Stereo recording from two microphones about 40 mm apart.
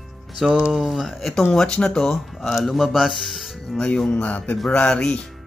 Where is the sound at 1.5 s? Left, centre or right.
Left.